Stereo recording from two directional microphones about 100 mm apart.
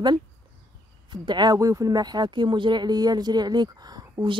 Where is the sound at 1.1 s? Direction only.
50° right (ahead or behind).